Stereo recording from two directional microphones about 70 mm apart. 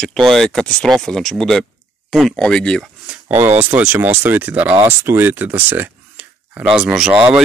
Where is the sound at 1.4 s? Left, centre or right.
Centre.